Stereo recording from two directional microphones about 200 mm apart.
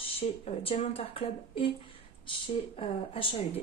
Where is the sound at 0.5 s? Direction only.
30° left (ahead or behind).